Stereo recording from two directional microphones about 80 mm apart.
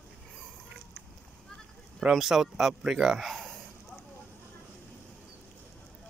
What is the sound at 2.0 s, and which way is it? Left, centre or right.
Speech, centre.